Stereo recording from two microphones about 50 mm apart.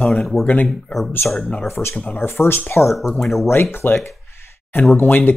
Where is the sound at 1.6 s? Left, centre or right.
Left.